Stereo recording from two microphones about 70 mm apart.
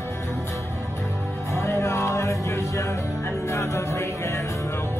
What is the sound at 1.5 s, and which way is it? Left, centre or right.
Music, left.